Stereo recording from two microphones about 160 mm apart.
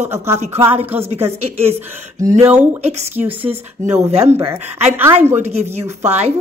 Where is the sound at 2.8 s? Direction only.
45° right (ahead or behind).